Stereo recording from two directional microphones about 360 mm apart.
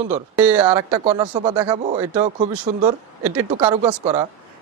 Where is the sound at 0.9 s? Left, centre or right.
Centre.